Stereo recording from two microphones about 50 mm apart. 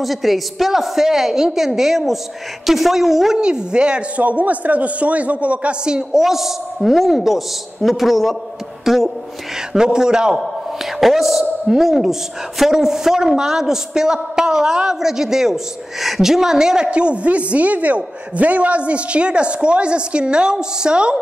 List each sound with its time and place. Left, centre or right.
0.0 s a woman's voice: centre
3.3 s a woman's voice: centre
4.2 s a man's voice: right
6.2 s a woman's voice: centre